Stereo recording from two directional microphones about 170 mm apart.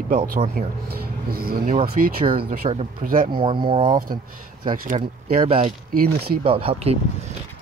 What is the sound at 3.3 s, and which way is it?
Speech, 30° right (ahead or behind).